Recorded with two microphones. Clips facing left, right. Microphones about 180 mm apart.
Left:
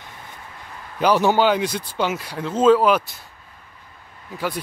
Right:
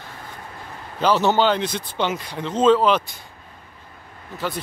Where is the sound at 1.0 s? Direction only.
10° left (ahead or behind).